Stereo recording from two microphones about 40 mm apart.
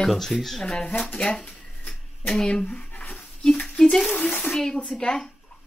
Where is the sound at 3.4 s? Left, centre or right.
Left.